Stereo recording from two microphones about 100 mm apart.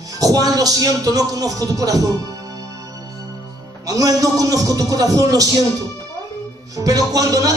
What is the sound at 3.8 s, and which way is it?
Speech, 35° right (ahead or behind).